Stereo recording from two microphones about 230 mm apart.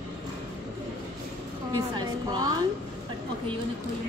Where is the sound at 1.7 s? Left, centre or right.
Centre.